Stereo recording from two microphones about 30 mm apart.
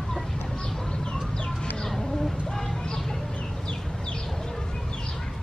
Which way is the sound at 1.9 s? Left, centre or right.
Centre.